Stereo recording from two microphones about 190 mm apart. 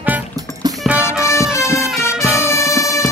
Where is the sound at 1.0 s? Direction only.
15° left (ahead or behind).